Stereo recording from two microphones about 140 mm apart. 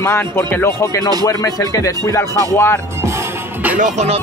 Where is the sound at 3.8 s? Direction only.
55° right (ahead or behind).